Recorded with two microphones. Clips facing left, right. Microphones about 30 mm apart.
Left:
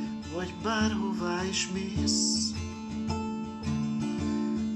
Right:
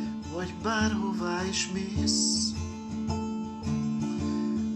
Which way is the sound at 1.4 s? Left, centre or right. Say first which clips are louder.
Even; right.